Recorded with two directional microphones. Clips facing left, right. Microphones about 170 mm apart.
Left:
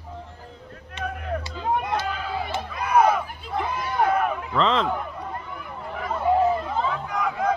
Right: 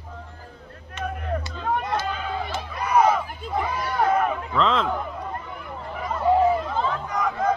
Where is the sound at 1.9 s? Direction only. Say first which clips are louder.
Even; 5° left (ahead or behind).